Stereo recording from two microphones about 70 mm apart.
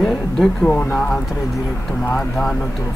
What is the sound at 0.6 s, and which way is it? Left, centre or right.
Speech, centre.